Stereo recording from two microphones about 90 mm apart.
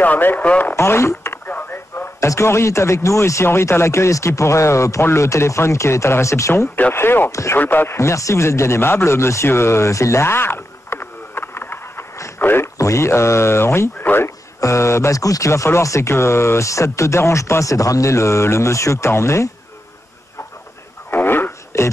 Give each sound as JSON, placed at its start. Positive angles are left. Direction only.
{"t": 0.0, "sound": "speech", "side_deg": 20}
{"t": 0.7, "sound": "speech", "side_deg": 30}
{"t": 1.5, "sound": "radio", "side_deg": 20}
{"t": 2.1, "sound": "speech", "side_deg": 35}
{"t": 7.5, "sound": "a man's voice", "side_deg": 20}
{"t": 12.7, "sound": "speech", "side_deg": 35}
{"t": 21.1, "sound": "radio", "side_deg": 25}